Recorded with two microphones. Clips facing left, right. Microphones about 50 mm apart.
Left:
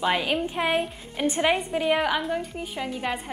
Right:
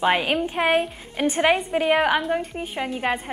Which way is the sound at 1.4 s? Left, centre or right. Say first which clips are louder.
Right 4 dB; centre.